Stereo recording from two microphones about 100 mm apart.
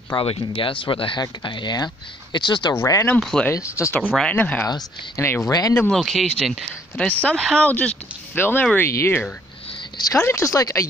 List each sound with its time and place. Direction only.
0.1 s speech: 60° left (ahead or behind)
2.7 s speech: 30° left (ahead or behind)
3.2 s speech: 5° left (ahead or behind)
3.5 s speech: 30° left (ahead or behind)
4.2 s speech: 15° left (ahead or behind)
4.6 s speech: 40° left (ahead or behind)
5.9 s speech: centre (ahead or behind); by 9.2 s 25° left (ahead or behind)
9.9 s speech: 40° left (ahead or behind)